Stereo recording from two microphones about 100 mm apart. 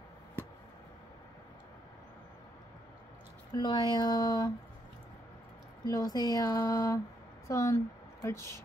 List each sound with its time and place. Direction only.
3.5 s speech: 45° left (ahead or behind)
5.9 s a woman's voice: 40° left (ahead or behind)